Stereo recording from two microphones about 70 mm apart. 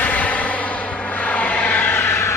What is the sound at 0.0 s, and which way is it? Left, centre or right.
Vehicle, left.